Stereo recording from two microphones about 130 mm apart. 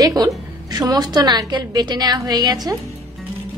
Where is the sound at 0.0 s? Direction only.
30° right (ahead or behind).